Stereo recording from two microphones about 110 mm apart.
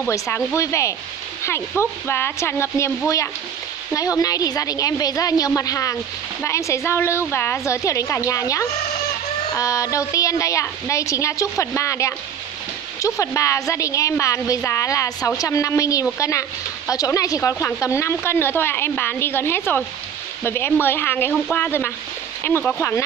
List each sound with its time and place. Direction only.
0.5 s a woman's voice: 25° left (ahead or behind)
3.9 s a woman's voice: 35° left (ahead or behind)